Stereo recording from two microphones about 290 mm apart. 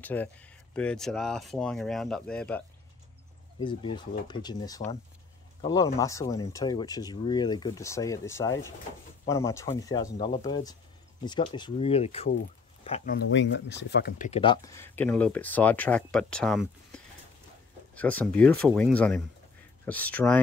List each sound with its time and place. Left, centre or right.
0.0 s speech: centre
3.5 s speech: centre
13.1 s speech: left; by 20.3 s centre